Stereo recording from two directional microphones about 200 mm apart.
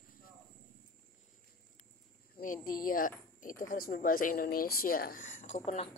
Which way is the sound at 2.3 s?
45° left (ahead or behind).